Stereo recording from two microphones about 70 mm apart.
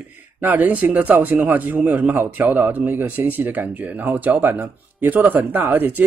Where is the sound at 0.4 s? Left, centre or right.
Right.